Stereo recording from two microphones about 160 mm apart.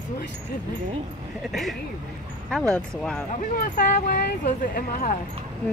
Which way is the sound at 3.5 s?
55° left (ahead or behind).